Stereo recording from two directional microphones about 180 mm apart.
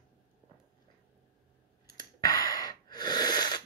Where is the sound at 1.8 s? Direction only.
20° left (ahead or behind).